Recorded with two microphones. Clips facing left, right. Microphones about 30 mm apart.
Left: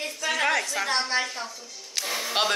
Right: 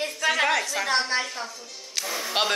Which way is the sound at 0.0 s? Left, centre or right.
Centre.